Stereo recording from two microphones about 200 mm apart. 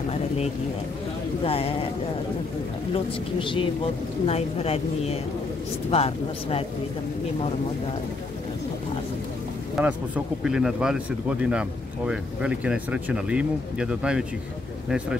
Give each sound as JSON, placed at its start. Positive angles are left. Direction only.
{"t": 1.4, "sound": "a woman's voice", "side_deg": 30}
{"t": 2.9, "sound": "a woman's voice", "side_deg": 25}
{"t": 9.8, "sound": "speech", "side_deg": -5}